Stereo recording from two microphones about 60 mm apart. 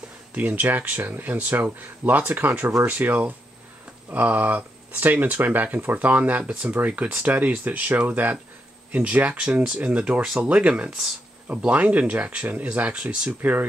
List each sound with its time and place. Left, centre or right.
0.3 s speech: right
10.2 s speech: centre
10.5 s speech: right
11.4 s speech: right
13.4 s speech: right